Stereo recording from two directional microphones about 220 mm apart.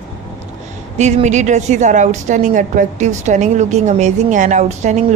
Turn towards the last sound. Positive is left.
turn(degrees=-30)  # may be behind; listen again after turning